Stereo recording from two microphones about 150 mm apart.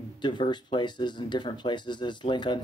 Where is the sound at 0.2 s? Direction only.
30° left (ahead or behind).